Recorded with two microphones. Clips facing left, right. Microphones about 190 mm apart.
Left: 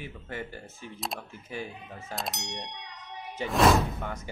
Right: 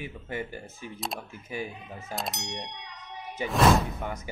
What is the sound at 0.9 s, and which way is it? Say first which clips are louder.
Speech: right 1 dB; centre (ahead or behind).